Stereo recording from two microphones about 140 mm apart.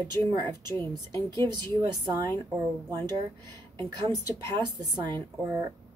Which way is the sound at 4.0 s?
30° right (ahead or behind).